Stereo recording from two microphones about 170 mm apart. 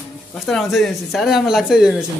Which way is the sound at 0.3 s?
Centre (ahead or behind).